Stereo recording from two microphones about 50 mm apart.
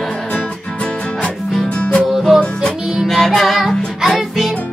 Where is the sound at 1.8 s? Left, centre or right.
Centre.